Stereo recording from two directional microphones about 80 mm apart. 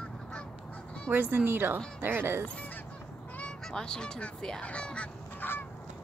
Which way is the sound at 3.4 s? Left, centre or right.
Centre.